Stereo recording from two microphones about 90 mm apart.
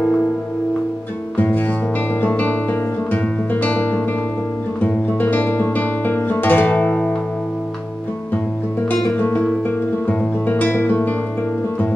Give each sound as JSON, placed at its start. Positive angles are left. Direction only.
{"t": 1.3, "sound": "music", "side_deg": 20}
{"t": 3.6, "sound": "music", "side_deg": 20}
{"t": 9.2, "sound": "music", "side_deg": 20}